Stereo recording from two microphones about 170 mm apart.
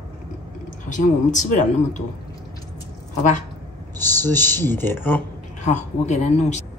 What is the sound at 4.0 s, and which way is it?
Speech, 10° left (ahead or behind).